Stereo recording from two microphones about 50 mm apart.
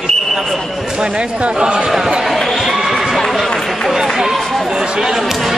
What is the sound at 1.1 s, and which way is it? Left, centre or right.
Speech, right.